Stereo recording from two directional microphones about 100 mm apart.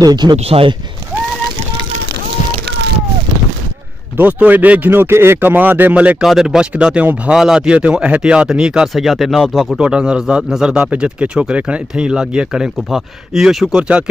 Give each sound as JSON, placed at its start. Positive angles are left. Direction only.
{"t": 0.0, "sound": "speech", "side_deg": -45}
{"t": 0.5, "sound": "speech", "side_deg": -70}
{"t": 4.2, "sound": "speech", "side_deg": -15}
{"t": 6.2, "sound": "a man's voice", "side_deg": -5}
{"t": 9.8, "sound": "a man's voice", "side_deg": -10}